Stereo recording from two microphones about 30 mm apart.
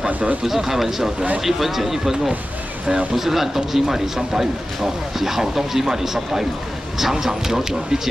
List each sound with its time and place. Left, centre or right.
0.5 s a man's voice: centre